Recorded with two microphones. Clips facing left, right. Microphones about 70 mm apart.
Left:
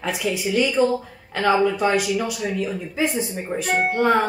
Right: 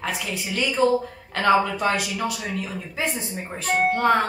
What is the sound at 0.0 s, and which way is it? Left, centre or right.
Speech, centre.